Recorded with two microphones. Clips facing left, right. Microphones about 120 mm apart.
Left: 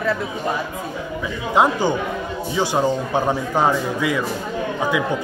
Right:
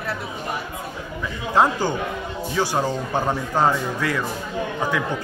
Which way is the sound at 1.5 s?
15° left (ahead or behind).